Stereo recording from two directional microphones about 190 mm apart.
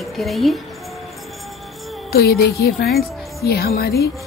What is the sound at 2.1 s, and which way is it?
A woman's voice, 55° left (ahead or behind).